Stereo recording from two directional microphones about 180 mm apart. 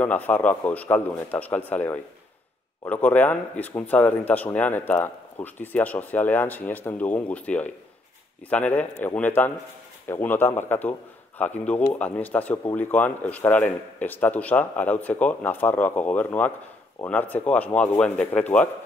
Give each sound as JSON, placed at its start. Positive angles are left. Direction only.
{"t": 0.0, "sound": "speech", "side_deg": 10}